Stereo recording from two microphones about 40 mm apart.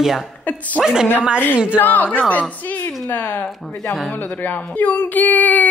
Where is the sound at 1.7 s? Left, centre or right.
Left.